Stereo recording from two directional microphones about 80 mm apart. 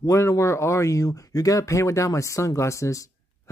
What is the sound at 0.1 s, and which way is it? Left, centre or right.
Speech, left.